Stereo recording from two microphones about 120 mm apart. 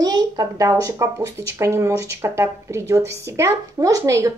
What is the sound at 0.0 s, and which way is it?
A woman's voice, 35° right (ahead or behind).